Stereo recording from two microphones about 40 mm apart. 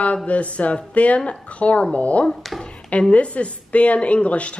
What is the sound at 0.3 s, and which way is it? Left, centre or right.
Speech, left.